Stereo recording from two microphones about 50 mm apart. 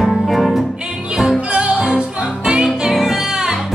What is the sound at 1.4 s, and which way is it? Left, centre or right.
Music, right.